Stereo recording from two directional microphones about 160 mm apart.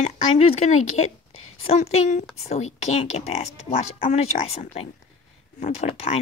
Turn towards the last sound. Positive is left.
turn(degrees=40)  # may be behind; listen again after turning